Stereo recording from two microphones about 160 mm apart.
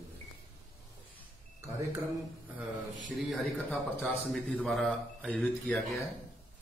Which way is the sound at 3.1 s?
Centre (ahead or behind).